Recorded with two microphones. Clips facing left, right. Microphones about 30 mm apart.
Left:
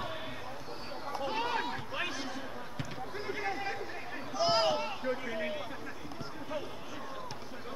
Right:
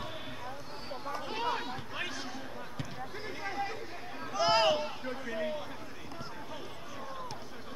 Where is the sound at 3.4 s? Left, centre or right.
Centre.